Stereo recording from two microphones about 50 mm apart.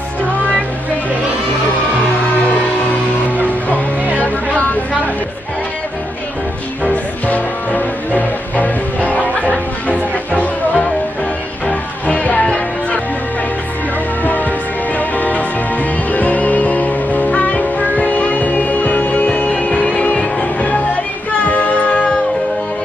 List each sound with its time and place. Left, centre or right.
2.9 s music: left
7.2 s music: left
12.1 s music: left
14.2 s music: left; by 20.8 s centre
21.5 s music: left